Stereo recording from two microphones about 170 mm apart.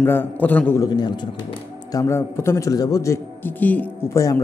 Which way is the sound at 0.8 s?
25° left (ahead or behind).